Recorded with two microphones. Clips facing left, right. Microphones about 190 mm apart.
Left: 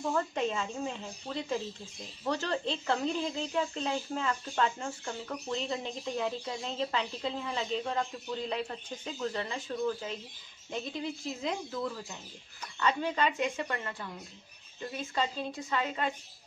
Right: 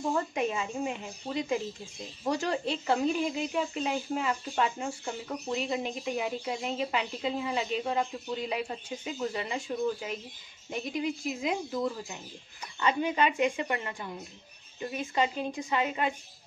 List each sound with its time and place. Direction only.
0.0 s speech: 15° right (ahead or behind)